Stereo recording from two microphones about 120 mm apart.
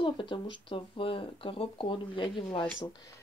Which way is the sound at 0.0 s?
45° left (ahead or behind).